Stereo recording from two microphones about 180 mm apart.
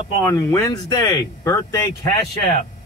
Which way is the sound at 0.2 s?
15° left (ahead or behind).